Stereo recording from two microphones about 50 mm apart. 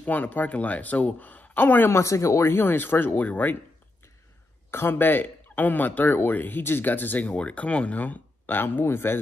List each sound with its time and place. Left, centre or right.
0.0 s speech: left
1.9 s speech: left
2.6 s speech: left
3.2 s speech: left
4.6 s speech: left
8.5 s speech: left